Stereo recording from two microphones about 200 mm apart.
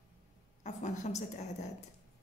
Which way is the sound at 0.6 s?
35° left (ahead or behind).